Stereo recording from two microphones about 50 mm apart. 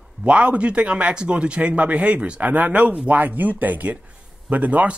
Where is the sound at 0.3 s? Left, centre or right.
Right.